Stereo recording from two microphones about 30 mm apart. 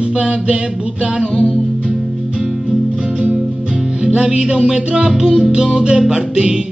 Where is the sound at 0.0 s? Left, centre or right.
Right.